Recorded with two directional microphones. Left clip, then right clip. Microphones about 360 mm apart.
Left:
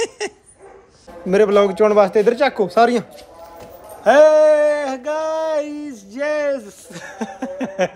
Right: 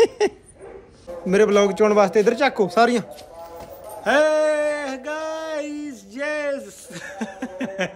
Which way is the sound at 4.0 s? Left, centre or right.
Centre.